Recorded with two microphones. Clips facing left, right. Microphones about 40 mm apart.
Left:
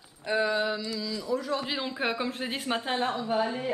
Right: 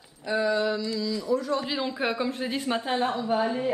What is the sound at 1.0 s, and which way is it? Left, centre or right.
Speech, centre.